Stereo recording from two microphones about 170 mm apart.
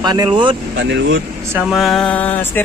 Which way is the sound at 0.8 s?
90° right.